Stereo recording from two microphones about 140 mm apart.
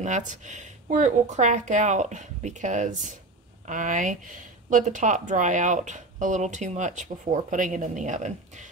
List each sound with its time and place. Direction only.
0.0 s speech: 60° right (ahead or behind)